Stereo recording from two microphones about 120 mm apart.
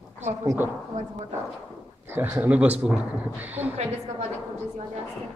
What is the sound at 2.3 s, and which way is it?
Speech, 10° right (ahead or behind).